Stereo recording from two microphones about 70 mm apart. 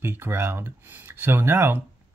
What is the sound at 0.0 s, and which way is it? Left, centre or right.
Speech, right.